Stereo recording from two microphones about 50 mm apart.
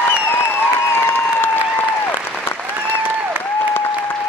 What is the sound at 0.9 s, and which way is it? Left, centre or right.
Applause, left.